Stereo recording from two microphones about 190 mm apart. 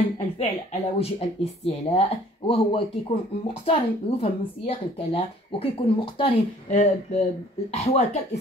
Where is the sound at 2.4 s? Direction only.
30° left (ahead or behind).